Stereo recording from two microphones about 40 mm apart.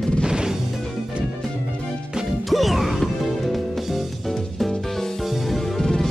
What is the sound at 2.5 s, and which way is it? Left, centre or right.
Music, centre.